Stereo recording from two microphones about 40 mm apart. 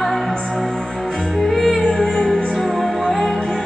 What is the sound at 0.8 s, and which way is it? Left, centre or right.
Music, centre.